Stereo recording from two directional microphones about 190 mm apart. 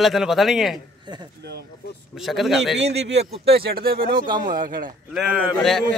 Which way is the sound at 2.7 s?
65° right (ahead or behind).